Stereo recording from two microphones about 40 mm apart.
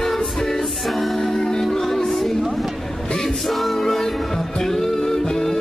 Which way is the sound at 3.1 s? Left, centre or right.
Centre.